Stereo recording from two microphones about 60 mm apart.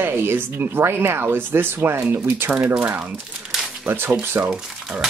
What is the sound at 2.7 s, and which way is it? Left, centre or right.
Speech, right.